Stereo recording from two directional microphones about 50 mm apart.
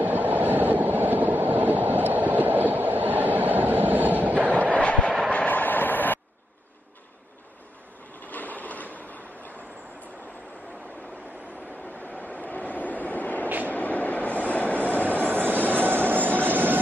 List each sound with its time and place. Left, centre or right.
0.0 s train: right
4.6 s train: left
5.3 s train: left
8.3 s train: left
12.1 s vehicle: left
13.7 s train: left
15.2 s train: right